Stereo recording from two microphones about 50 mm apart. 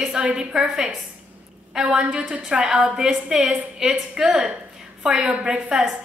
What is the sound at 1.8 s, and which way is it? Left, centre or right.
Speech, centre.